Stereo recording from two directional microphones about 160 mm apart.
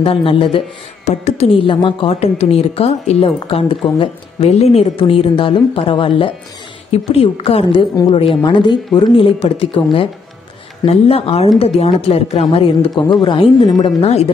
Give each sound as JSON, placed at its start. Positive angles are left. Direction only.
{"t": 0.0, "sound": "a woman's voice", "side_deg": 35}
{"t": 10.9, "sound": "a woman's voice", "side_deg": 40}
{"t": 14.0, "sound": "a woman's voice", "side_deg": 40}